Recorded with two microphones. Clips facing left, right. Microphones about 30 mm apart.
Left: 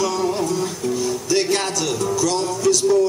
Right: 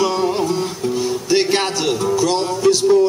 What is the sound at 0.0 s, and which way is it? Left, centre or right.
Music, right.